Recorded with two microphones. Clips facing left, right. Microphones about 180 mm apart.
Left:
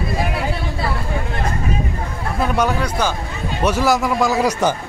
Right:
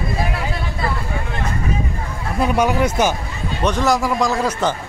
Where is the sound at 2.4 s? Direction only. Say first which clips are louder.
Right 3 dB; 10° right (ahead or behind).